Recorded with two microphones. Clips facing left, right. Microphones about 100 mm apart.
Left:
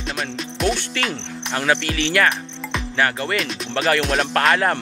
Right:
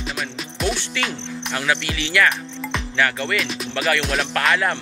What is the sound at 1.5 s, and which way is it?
Speech, 40° left (ahead or behind).